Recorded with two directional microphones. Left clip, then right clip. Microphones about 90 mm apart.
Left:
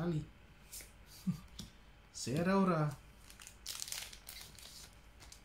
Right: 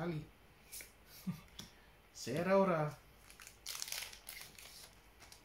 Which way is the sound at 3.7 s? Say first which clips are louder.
Even; 20° left (ahead or behind).